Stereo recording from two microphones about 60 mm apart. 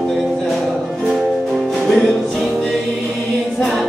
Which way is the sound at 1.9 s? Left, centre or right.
Centre.